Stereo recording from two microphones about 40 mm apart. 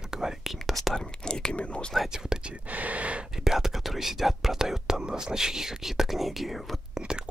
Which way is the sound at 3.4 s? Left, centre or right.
Centre.